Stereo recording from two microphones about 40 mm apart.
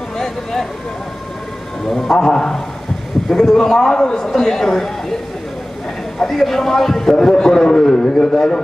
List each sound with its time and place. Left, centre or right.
0.2 s a sound: centre
1.9 s a man's voice: centre
6.1 s a man's voice: centre